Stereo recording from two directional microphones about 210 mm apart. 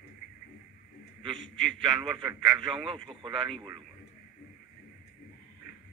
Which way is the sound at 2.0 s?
5° right (ahead or behind).